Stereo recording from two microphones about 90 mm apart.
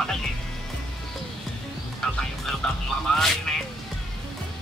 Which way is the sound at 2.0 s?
5° left (ahead or behind).